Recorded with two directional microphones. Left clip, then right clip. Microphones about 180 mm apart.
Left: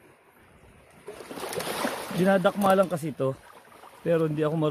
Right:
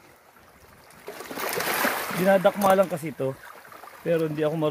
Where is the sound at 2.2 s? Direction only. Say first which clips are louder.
Right 3 dB; 10° left (ahead or behind).